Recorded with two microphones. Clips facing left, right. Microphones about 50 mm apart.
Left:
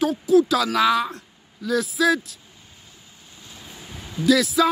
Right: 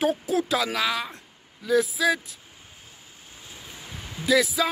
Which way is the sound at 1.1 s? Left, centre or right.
Centre.